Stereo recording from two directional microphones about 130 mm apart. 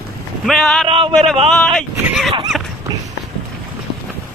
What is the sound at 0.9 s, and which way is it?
Speech, 45° right (ahead or behind).